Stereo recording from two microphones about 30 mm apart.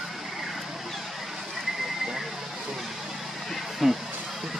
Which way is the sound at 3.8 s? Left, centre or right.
Centre.